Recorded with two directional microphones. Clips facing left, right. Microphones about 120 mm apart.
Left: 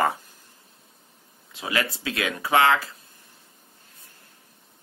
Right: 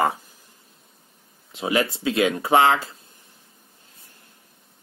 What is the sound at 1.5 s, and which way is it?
Speech, 25° right (ahead or behind).